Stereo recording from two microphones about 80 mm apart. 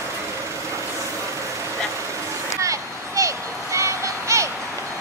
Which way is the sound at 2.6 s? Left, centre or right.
Right.